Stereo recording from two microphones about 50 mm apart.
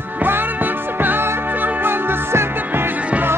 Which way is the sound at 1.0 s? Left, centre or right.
Right.